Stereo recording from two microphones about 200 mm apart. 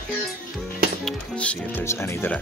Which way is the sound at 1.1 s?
5° left (ahead or behind).